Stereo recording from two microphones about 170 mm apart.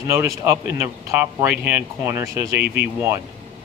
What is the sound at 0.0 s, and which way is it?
Speech, 20° right (ahead or behind).